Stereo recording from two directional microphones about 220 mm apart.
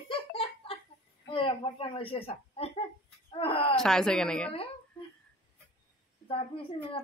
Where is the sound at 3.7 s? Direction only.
5° left (ahead or behind).